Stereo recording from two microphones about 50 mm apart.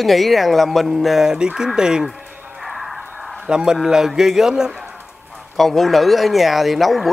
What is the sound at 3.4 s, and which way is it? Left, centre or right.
A man's voice, centre.